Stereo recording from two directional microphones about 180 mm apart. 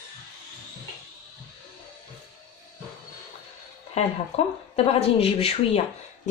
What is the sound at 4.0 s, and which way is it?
Speech, 40° left (ahead or behind).